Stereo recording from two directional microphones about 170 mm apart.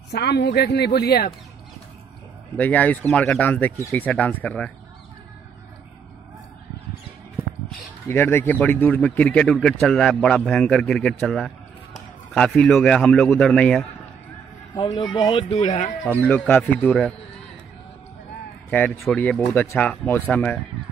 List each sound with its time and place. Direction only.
0.1 s a woman's voice: 80° left
2.5 s speech: 10° left (ahead or behind)
8.1 s speech: 15° left (ahead or behind)
14.8 s a man's voice: 25° left (ahead or behind)
15.5 s speech: 35° left (ahead or behind)
16.3 s speech: 10° left (ahead or behind)
18.7 s speech: 10° left (ahead or behind)